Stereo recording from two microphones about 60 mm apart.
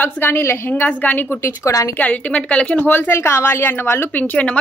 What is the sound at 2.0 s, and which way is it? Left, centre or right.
Speech, left.